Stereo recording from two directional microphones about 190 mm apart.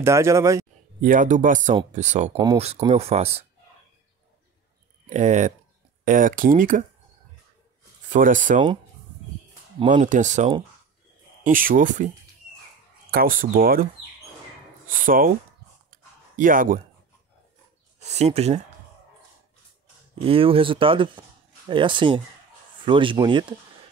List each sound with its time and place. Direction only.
0.0 s speech: 15° right (ahead or behind)
1.0 s speech: 40° right (ahead or behind)
2.3 s speech: 15° right (ahead or behind)
2.9 s speech: 35° right (ahead or behind)
5.1 s speech: 40° right (ahead or behind)
8.1 s speech: 45° right (ahead or behind)
9.8 s speech: 40° right (ahead or behind)
13.1 s speech: 50° right (ahead or behind)
14.9 s speech: 45° right (ahead or behind)
15.9 s a sound: 45° right (ahead or behind)
18.0 s speech: 35° right (ahead or behind)
20.2 s speech: 30° right (ahead or behind)